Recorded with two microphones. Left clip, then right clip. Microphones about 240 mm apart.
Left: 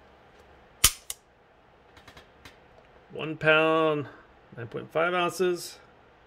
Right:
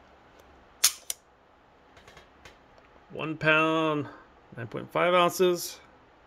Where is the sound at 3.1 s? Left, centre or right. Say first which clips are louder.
Left 1 dB; centre.